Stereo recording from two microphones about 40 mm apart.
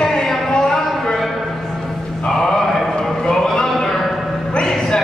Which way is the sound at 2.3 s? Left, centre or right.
Centre.